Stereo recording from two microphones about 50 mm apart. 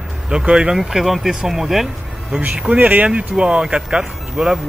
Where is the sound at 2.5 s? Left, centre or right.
Right.